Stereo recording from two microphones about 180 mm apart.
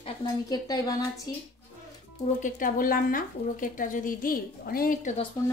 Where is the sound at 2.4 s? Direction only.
50° left (ahead or behind).